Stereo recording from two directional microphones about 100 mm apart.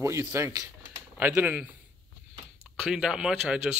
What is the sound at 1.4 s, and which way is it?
Speech, 15° right (ahead or behind).